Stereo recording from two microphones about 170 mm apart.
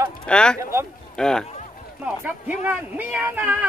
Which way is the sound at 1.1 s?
5° left (ahead or behind).